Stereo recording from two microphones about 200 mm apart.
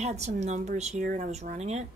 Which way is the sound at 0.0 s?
35° right (ahead or behind).